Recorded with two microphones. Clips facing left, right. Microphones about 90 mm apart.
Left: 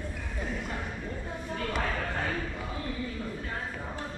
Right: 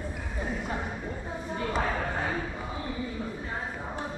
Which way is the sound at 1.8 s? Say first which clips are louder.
Right 2 dB; 15° right (ahead or behind).